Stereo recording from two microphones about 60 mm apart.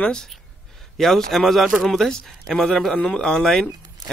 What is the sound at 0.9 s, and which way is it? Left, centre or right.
Speech, centre.